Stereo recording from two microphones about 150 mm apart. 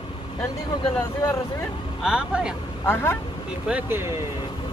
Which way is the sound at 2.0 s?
5° right (ahead or behind).